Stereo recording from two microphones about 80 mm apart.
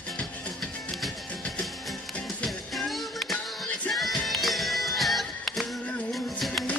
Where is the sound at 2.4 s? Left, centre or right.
Centre.